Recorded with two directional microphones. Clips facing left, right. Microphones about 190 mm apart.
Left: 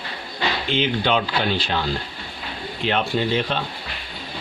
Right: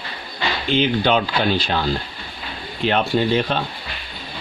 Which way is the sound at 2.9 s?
45° right (ahead or behind).